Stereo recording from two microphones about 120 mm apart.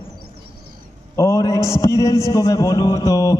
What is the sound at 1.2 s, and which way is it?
Mantra, 25° left (ahead or behind).